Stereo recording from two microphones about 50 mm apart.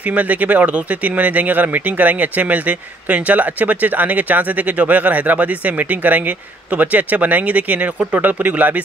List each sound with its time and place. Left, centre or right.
0.1 s speech: right